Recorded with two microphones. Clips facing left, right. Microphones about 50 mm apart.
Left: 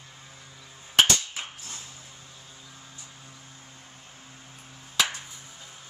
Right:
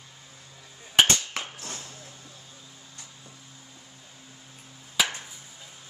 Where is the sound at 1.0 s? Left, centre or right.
Centre.